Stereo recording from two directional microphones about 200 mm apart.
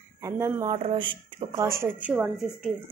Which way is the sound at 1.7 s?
10° right (ahead or behind).